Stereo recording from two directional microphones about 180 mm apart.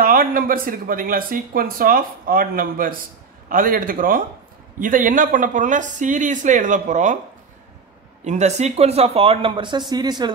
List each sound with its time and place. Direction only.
0.0 s speech: 50° right (ahead or behind)
8.2 s speech: 40° right (ahead or behind); by 10.3 s 25° right (ahead or behind)